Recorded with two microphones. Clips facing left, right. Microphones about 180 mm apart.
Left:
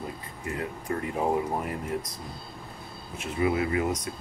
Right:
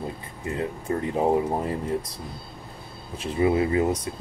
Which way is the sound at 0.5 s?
25° right (ahead or behind).